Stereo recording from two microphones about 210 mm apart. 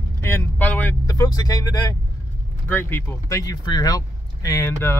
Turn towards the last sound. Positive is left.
turn(degrees=10)  # may be behind; listen again after turning